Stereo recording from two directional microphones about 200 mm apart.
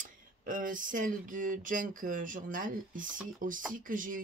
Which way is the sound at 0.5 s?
40° right (ahead or behind).